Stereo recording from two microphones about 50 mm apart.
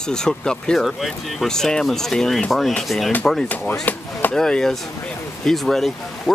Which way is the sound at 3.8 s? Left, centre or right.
Left.